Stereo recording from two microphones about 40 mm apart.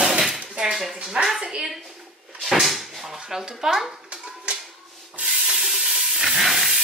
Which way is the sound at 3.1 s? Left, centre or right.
Centre.